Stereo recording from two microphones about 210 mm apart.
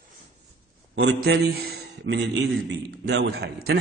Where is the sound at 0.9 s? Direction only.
65° right (ahead or behind).